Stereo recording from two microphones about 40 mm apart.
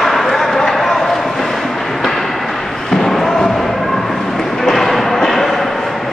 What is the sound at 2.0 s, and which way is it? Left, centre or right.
Train, centre.